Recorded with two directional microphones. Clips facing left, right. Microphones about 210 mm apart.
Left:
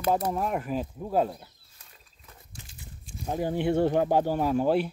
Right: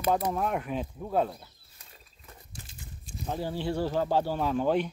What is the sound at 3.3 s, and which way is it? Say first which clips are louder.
Speech: left 5 dB; 15° left (ahead or behind).